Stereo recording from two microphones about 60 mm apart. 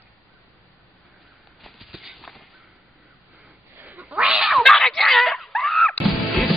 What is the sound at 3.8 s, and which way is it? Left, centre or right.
Cat, right.